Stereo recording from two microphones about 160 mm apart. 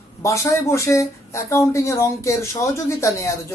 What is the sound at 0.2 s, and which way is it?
Speech, 20° left (ahead or behind).